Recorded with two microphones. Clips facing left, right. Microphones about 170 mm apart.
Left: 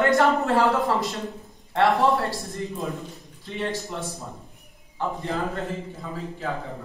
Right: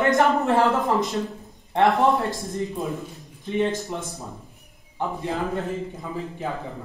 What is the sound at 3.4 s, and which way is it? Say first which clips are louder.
Speech: right 6 dB; 20° right (ahead or behind).